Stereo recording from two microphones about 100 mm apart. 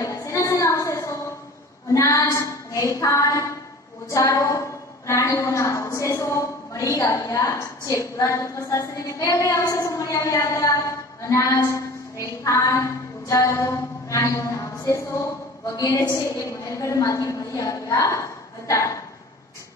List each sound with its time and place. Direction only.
0.0 s a sound: 30° left (ahead or behind)
2.0 s child singing: 30° left (ahead or behind)
4.1 s a woman's voice: 35° left (ahead or behind)